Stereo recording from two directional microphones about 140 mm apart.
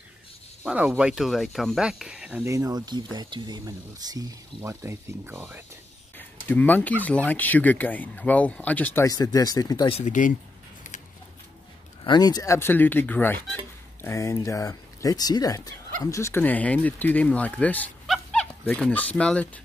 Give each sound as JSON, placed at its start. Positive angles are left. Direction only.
{"t": 0.7, "sound": "speech", "side_deg": -5}
{"t": 2.4, "sound": "speech", "side_deg": -25}
{"t": 6.1, "sound": "speech", "side_deg": 10}
{"t": 9.0, "sound": "speech", "side_deg": 25}
{"t": 9.8, "sound": "speech", "side_deg": 45}
{"t": 12.0, "sound": "speech", "side_deg": 30}
{"t": 12.5, "sound": "speech", "side_deg": 15}
{"t": 18.0, "sound": "dog", "side_deg": 0}